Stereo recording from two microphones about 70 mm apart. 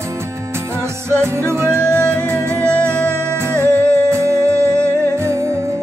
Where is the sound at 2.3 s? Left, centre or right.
Right.